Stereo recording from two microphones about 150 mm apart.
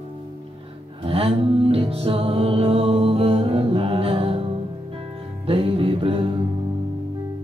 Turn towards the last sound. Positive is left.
turn(degrees=-40)  # may be behind; listen again after turning